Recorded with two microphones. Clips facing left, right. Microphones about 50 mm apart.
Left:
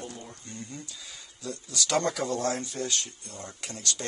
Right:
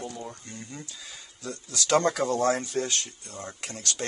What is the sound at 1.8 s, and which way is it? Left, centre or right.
Speech, right.